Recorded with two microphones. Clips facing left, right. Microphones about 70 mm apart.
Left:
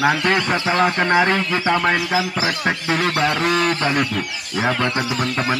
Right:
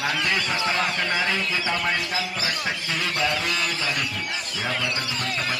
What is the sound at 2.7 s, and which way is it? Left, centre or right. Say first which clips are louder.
Speech: left 8 dB; left.